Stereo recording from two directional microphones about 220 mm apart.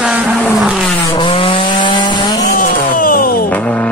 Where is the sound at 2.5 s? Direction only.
35° left (ahead or behind).